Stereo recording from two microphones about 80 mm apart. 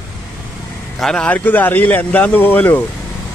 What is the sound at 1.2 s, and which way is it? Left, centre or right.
Speech, left.